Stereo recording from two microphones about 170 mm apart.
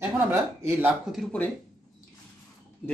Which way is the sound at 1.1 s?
5° left (ahead or behind).